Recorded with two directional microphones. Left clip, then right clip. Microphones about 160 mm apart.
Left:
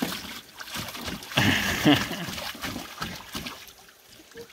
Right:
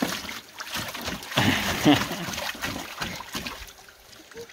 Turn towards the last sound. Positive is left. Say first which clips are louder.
# right 3 dB
turn(degrees=-15)  # may be behind; listen again after turning